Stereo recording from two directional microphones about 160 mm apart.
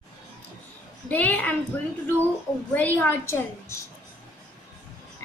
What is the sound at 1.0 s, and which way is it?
Speech, 10° left (ahead or behind).